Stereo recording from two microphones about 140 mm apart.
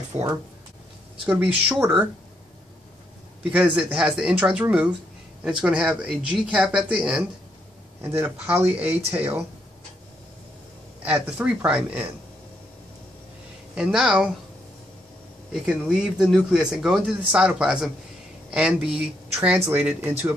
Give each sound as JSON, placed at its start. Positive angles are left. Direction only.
{"t": 0.1, "sound": "speech", "side_deg": -20}
{"t": 3.5, "sound": "speech", "side_deg": -10}
{"t": 11.1, "sound": "speech", "side_deg": -5}
{"t": 13.7, "sound": "speech", "side_deg": -5}
{"t": 15.5, "sound": "speech", "side_deg": -5}